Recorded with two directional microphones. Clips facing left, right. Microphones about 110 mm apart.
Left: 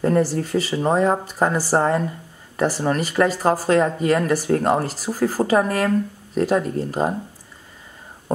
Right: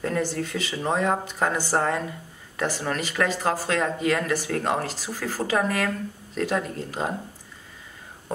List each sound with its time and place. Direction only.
0.0 s speech: 35° left (ahead or behind)